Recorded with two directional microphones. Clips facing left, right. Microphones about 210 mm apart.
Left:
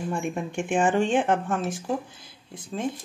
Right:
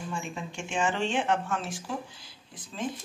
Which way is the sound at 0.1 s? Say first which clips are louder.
Left 8 dB; 60° left (ahead or behind).